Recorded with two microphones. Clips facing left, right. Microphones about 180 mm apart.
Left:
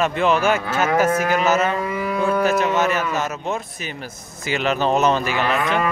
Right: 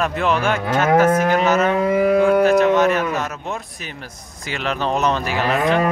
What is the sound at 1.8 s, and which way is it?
Speech, 60° right (ahead or behind).